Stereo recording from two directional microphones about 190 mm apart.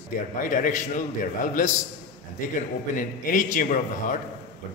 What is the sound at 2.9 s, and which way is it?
A man's voice, 45° left (ahead or behind).